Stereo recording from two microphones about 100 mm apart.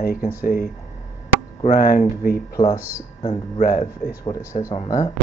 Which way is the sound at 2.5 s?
35° left (ahead or behind).